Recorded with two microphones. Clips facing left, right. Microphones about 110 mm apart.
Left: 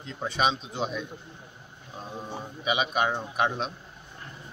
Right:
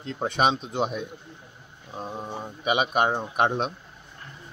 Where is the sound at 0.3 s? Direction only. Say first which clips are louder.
Right 3 dB; 55° right (ahead or behind).